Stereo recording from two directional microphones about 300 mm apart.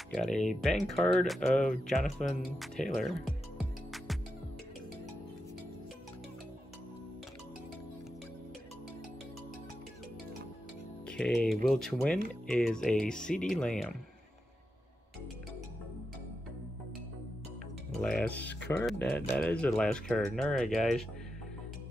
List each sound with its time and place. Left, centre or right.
0.1 s speech: centre
11.1 s speech: centre
18.0 s speech: centre
18.4 s speech: left
18.7 s speech: centre